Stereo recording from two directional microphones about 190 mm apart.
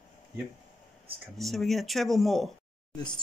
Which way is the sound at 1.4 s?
Centre (ahead or behind).